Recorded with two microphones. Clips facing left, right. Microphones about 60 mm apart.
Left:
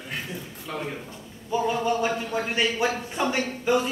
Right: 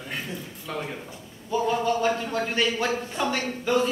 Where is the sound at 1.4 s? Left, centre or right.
Centre.